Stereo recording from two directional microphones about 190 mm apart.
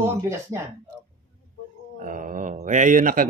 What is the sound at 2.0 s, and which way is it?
Speech, 45° right (ahead or behind).